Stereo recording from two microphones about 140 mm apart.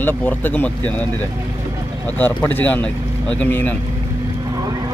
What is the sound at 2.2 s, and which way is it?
Speech, 10° left (ahead or behind).